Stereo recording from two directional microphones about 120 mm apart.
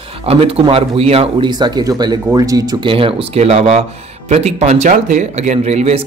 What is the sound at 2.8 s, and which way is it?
Speech, 50° right (ahead or behind).